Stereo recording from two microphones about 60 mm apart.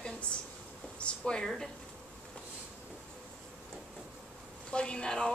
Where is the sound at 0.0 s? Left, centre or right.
Centre.